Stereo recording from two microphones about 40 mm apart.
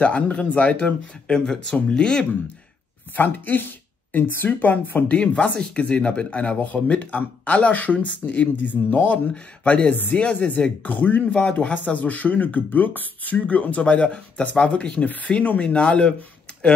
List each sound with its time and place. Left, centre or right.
0.0 s speech: left
3.2 s speech: left
4.1 s speech: left
4.5 s speech: left
5.1 s speech: left
6.6 s speech: left
10.8 s speech: left